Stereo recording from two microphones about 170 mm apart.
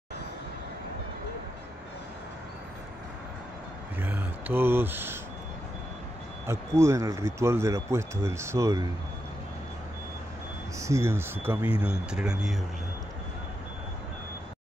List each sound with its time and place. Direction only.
4.0 s speech: 10° right (ahead or behind)
6.8 s speech: 15° right (ahead or behind)
10.8 s speech: 15° right (ahead or behind)